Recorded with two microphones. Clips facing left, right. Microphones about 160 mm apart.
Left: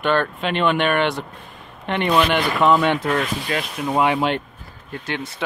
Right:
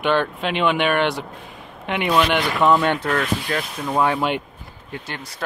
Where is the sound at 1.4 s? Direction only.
5° right (ahead or behind).